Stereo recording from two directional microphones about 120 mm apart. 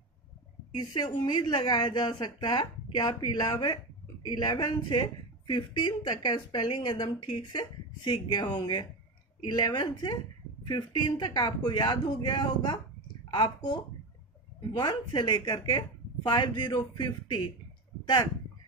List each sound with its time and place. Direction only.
0.7 s speech: 35° left (ahead or behind)
14.8 s speech: 35° left (ahead or behind)